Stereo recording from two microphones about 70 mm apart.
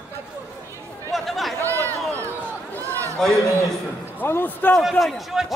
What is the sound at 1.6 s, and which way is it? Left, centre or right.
Speech, right.